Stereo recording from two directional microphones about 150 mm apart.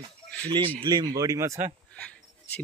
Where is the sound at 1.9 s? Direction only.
10° left (ahead or behind).